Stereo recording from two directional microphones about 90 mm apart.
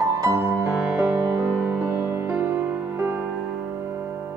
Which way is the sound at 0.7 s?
10° right (ahead or behind).